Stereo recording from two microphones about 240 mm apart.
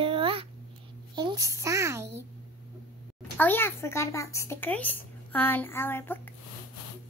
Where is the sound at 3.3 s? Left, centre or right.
Centre.